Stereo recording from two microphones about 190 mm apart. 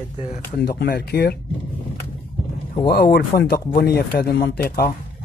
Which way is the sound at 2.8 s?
55° left (ahead or behind).